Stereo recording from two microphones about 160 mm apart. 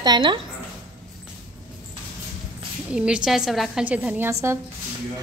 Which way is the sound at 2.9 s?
5° right (ahead or behind).